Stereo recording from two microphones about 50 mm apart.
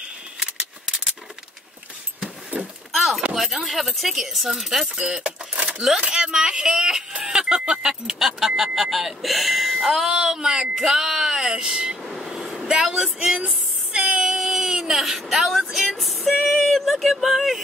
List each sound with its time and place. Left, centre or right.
0.4 s a sound: centre
2.9 s a sound: centre
3.3 s speech: centre
3.6 s speech: centre
4.9 s vehicle: right
5.9 s speech: centre
12.0 s a sound: centre
12.6 s speech: centre
13.9 s child singing: centre
14.2 s vehicle: centre